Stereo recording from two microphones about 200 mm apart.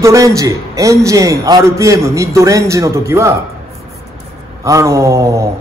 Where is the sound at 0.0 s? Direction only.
15° right (ahead or behind).